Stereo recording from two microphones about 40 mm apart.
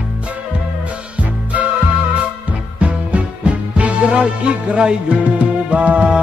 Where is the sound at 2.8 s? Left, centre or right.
Right.